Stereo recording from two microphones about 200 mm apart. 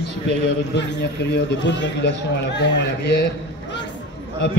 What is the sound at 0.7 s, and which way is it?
A man's voice, 60° left (ahead or behind).